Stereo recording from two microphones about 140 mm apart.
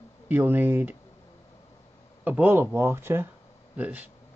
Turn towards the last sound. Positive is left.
turn(degrees=-10)  # may be behind; listen again after turning